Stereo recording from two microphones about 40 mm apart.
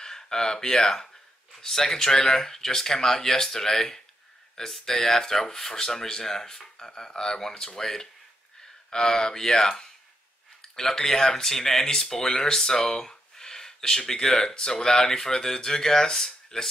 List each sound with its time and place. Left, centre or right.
0.0 s speech: centre